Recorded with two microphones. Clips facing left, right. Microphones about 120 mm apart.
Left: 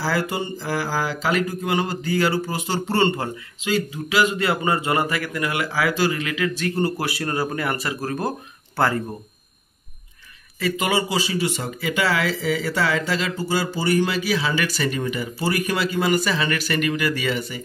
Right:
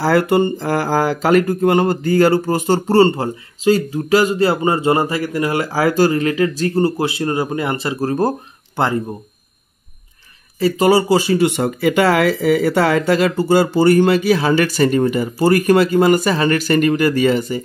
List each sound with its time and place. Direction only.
0.0 s speech: 60° right (ahead or behind); by 8.4 s 35° right (ahead or behind)
8.7 s speech: 25° right (ahead or behind)
10.6 s speech: 35° right (ahead or behind)